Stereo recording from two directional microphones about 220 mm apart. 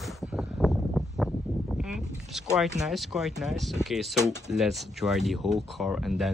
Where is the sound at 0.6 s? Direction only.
Centre (ahead or behind).